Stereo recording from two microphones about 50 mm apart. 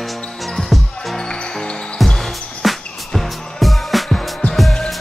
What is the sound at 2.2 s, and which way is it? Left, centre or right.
Music, centre.